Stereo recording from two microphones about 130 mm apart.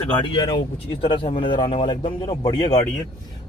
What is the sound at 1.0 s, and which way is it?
A man's voice, 45° left (ahead or behind).